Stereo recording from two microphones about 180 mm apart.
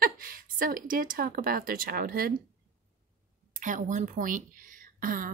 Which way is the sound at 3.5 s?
45° right (ahead or behind).